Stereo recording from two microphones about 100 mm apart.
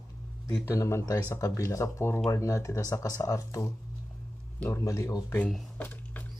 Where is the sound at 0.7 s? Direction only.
30° left (ahead or behind).